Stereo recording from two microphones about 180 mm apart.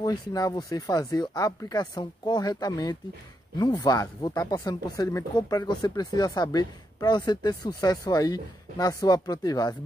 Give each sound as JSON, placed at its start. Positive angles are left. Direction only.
{"t": 0.0, "sound": "speech", "side_deg": 20}